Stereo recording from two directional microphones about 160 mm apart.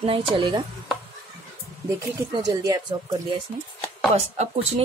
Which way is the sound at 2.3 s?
25° right (ahead or behind).